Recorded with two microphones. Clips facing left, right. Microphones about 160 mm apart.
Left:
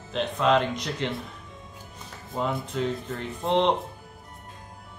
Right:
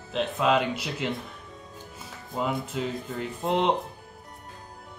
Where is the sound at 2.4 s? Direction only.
5° right (ahead or behind).